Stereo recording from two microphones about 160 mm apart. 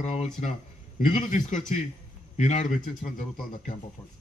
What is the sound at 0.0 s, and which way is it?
A man's voice, 45° left (ahead or behind).